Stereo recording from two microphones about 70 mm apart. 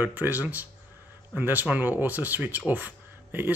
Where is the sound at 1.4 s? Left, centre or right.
Right.